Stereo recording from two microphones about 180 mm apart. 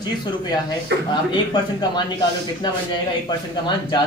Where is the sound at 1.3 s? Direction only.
25° left (ahead or behind).